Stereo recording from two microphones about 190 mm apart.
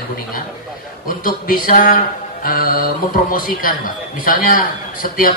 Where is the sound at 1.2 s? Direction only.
50° left (ahead or behind).